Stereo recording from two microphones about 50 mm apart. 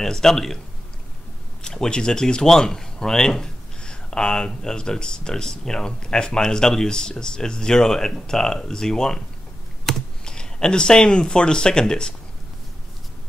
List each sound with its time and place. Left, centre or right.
0.0 s speech: centre
1.6 s speech: centre